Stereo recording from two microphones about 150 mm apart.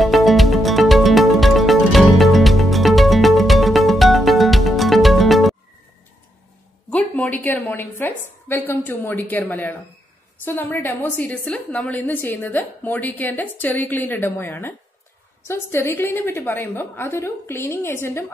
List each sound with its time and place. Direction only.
0.0 s music: centre (ahead or behind)
6.9 s a woman's voice: 10° left (ahead or behind)